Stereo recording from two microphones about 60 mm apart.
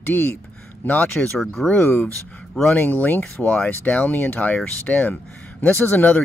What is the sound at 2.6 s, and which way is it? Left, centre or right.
Speech, left.